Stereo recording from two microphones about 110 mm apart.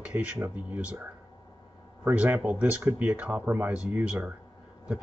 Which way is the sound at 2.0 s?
15° right (ahead or behind).